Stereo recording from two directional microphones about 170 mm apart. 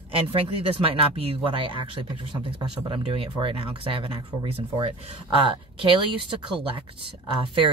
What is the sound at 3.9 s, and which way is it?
Speech, 30° right (ahead or behind).